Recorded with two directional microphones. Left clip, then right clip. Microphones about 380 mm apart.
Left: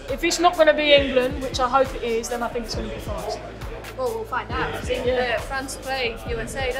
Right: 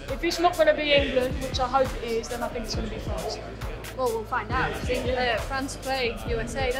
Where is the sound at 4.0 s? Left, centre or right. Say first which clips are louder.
Left 1 dB; right.